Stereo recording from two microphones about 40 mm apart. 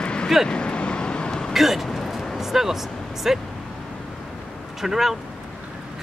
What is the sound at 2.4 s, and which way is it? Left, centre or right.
Speech, centre.